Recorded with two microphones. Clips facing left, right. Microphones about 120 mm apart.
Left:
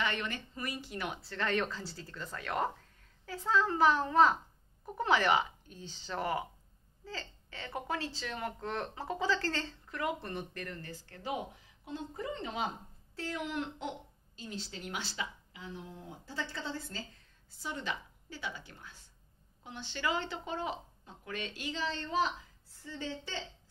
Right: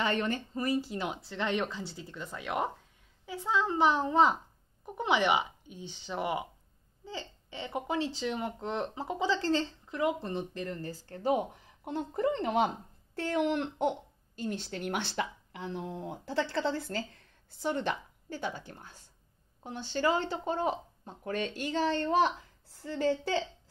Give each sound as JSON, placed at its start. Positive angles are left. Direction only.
{"t": 0.0, "sound": "speech", "side_deg": -35}
{"t": 10.8, "sound": "speech", "side_deg": -40}
{"t": 17.6, "sound": "speech", "side_deg": -55}